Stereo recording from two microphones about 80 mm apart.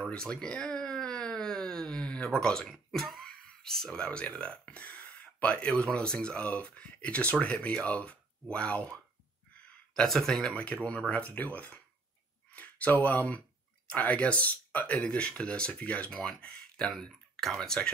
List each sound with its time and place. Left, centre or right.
0.1 s speech: centre